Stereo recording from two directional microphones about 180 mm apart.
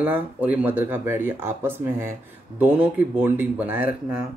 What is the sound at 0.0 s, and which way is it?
Speech, 10° right (ahead or behind).